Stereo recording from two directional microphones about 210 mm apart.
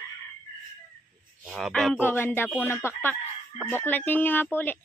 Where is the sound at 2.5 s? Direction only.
10° left (ahead or behind).